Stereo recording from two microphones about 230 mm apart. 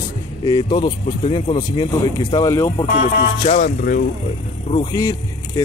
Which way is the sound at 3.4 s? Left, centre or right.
Left.